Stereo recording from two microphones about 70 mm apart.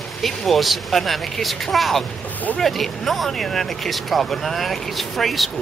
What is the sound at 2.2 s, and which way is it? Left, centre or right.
Speech, left.